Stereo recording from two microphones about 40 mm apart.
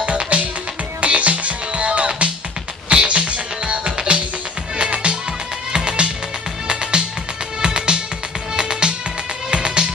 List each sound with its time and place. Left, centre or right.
0.0 s music: right